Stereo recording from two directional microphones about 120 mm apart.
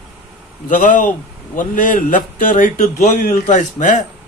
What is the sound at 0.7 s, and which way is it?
A man's voice, 90° left.